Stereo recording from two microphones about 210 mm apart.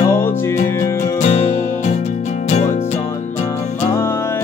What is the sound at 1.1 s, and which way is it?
Music, 35° left (ahead or behind).